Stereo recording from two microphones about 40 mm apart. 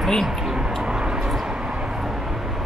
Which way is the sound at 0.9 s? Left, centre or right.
Centre.